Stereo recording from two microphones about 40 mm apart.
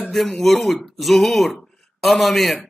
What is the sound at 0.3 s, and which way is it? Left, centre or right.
Speech, centre.